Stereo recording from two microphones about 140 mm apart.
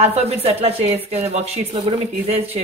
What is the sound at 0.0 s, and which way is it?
Speech, 50° right (ahead or behind).